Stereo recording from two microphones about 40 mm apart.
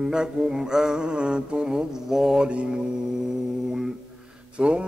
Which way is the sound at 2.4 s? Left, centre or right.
Right.